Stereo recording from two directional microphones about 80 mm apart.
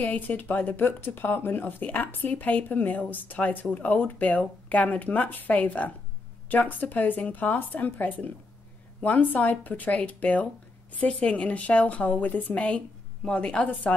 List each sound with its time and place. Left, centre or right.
0.0 s speech: left